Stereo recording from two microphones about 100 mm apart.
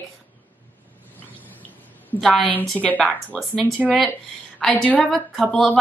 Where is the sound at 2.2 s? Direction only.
5° left (ahead or behind).